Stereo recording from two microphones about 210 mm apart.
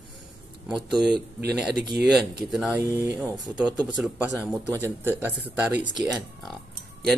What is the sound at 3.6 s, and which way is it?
Speech, 20° right (ahead or behind).